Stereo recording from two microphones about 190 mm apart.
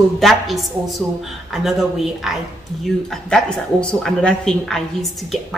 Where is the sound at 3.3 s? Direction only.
5° left (ahead or behind).